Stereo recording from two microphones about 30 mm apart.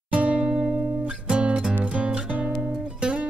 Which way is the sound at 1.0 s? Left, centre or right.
Right.